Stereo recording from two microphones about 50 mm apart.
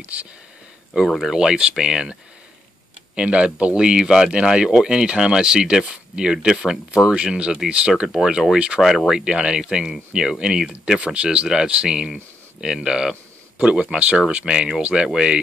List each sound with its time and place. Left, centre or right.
1.2 s speech: centre
3.2 s speech: right
8.5 s speech: right
8.8 s speech: centre
9.1 s speech: centre